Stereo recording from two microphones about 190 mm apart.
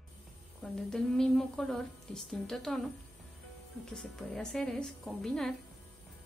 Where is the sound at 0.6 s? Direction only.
5° left (ahead or behind).